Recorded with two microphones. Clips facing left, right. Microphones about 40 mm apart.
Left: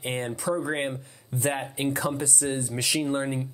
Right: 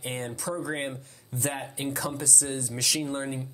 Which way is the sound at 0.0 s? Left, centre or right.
Left.